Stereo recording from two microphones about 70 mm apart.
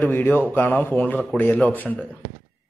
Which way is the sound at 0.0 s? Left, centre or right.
Left.